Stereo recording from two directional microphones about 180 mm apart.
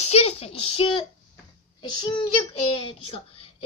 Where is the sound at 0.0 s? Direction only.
35° left (ahead or behind).